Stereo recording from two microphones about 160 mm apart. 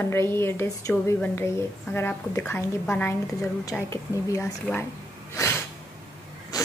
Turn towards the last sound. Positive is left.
turn(degrees=25)  # may be behind; listen again after turning